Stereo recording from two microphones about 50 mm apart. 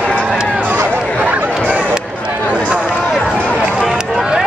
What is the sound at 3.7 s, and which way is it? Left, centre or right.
Run, centre.